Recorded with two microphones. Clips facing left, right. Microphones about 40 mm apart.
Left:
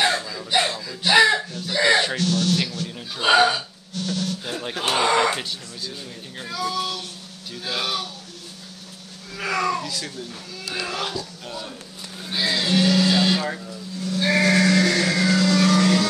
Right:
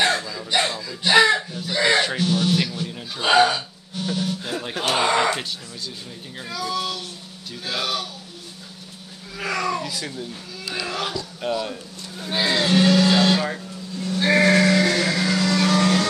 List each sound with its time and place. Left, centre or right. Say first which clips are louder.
0.0 s chuckle: right 1 dB; centre
2.1 s a sound: right 1 dB; centre
2.9 s speech: left 1 dB; centre
3.9 s a sound: right 1 dB; centre
4.5 s speech: even; centre
9.4 s speech: left 1 dB; centre
11.4 s speech: right 8 dB; right
14.0 s sheep: right 2 dB; right
15.8 s a sound: even; right